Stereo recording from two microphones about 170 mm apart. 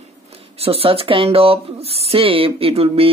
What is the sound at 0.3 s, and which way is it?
Speech, 35° right (ahead or behind).